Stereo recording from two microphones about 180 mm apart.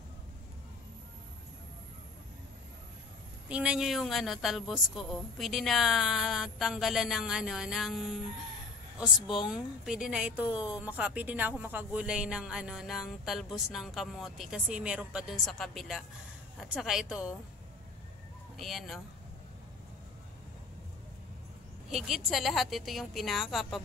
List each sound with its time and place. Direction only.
3.4 s a woman's voice: 5° right (ahead or behind)
9.0 s a woman's voice: centre (ahead or behind)
18.6 s a woman's voice: centre (ahead or behind)
21.9 s a woman's voice: centre (ahead or behind)